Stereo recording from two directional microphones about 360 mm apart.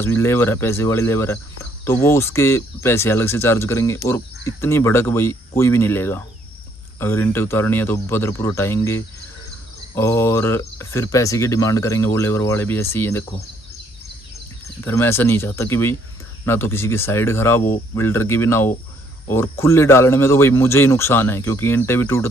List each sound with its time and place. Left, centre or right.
0.0 s speech: centre
14.8 s speech: centre